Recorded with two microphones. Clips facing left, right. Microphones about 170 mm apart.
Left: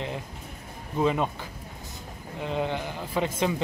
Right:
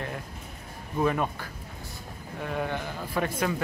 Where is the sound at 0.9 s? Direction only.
20° left (ahead or behind).